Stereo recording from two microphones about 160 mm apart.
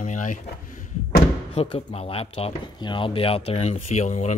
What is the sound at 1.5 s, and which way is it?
Speech, 35° left (ahead or behind).